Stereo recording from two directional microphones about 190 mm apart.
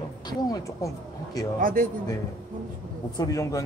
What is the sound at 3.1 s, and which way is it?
Speech, 20° left (ahead or behind).